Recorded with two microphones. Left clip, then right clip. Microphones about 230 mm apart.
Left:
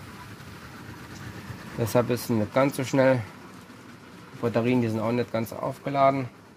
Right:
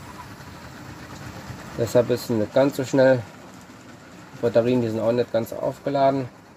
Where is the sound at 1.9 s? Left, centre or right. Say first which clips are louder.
Right 4 dB; left.